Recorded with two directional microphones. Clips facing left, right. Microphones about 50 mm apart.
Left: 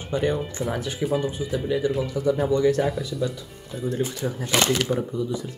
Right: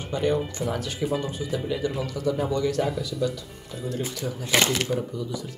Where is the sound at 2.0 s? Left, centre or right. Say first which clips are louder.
Left 4 dB; left.